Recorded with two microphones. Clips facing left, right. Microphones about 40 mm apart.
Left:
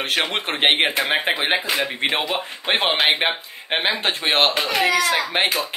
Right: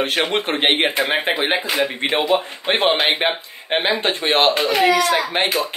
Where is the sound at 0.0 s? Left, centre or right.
Centre.